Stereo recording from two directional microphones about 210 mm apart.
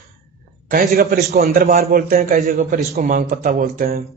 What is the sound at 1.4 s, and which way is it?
A man's voice, 45° right (ahead or behind).